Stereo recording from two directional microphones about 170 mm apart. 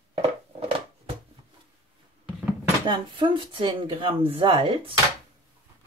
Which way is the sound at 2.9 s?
30° right (ahead or behind).